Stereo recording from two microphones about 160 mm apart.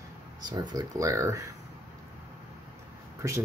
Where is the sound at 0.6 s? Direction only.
20° right (ahead or behind).